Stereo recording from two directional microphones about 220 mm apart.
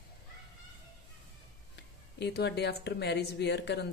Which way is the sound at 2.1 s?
50° left (ahead or behind).